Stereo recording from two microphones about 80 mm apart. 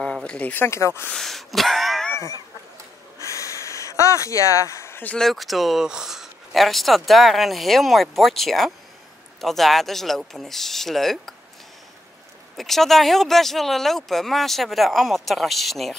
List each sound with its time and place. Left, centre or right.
0.0 s speech: centre
0.7 s speech: left
1.1 s a sound: centre
3.2 s a sound: left
5.2 s speech: centre
12.5 s speech: centre